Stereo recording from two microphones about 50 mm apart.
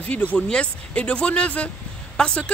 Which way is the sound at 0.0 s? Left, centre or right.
Left.